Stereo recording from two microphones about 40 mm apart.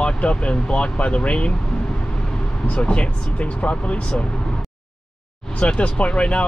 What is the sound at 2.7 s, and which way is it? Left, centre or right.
Speech, left.